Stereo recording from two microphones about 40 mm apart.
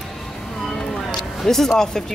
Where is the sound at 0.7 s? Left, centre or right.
Centre.